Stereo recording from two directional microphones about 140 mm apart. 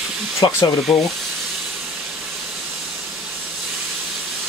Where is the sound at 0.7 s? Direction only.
Centre (ahead or behind).